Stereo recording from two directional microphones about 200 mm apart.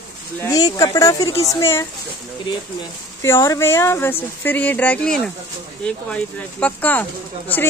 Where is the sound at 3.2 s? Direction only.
15° left (ahead or behind).